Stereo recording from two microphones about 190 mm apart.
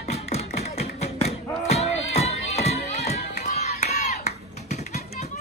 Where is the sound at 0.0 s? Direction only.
35° left (ahead or behind).